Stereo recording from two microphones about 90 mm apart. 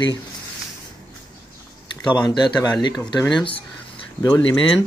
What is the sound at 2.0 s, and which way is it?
Speech, 50° left (ahead or behind).